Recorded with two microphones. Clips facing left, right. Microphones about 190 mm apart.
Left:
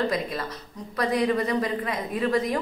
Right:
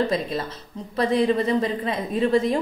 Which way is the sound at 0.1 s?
25° right (ahead or behind).